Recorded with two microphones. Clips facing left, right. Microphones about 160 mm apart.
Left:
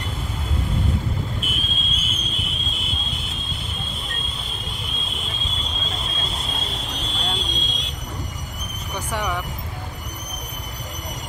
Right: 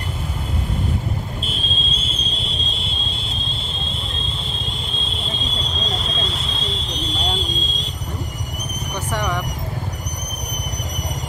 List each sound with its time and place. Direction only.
1.4 s fire alarm: 30° right (ahead or behind)
5.0 s vehicle: 30° right (ahead or behind)
9.1 s vehicle: 10° left (ahead or behind)